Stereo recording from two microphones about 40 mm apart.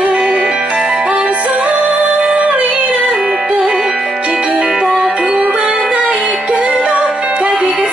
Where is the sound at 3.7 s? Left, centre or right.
Centre.